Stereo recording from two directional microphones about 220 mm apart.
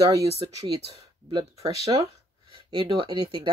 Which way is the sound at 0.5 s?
15° right (ahead or behind).